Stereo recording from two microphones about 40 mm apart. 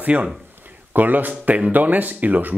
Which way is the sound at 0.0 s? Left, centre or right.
Right.